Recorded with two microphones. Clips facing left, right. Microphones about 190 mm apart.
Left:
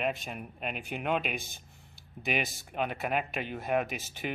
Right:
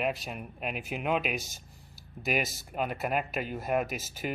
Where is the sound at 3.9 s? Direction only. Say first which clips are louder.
Right 2 dB; 40° right (ahead or behind).